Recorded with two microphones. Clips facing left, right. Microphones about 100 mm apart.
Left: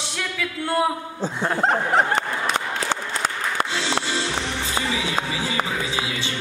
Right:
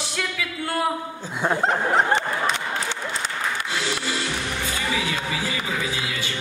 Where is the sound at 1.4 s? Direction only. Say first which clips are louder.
Even; 5° right (ahead or behind).